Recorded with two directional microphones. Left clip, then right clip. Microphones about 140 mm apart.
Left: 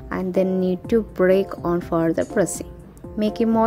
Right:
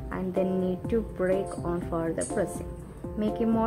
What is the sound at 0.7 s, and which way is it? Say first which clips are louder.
Speech: left 8 dB; 45° left (ahead or behind).